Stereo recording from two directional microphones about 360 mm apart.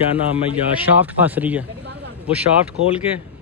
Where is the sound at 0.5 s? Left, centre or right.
Centre.